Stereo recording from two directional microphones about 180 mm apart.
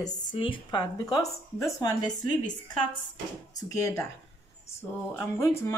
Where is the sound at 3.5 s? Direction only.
15° left (ahead or behind).